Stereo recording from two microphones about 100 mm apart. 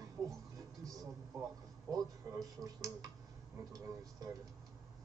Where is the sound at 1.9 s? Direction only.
35° right (ahead or behind).